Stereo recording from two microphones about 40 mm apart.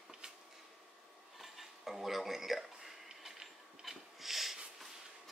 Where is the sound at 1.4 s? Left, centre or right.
Centre.